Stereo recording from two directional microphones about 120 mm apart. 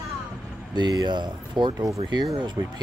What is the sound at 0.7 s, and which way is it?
Speech, 35° right (ahead or behind).